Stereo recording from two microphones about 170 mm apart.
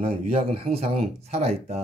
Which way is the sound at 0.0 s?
35° right (ahead or behind).